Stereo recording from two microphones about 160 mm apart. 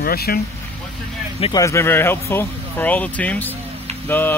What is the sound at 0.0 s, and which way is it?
Speech, 75° left (ahead or behind).